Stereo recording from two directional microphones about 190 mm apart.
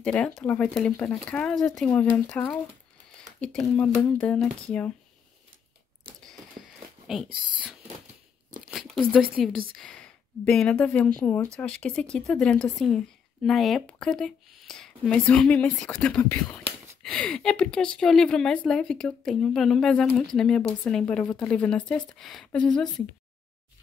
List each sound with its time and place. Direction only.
0.0 s a woman's voice: 5° left (ahead or behind)
7.2 s speech: 25° right (ahead or behind)
8.6 s a sound: centre (ahead or behind)
9.3 s a woman's voice: centre (ahead or behind)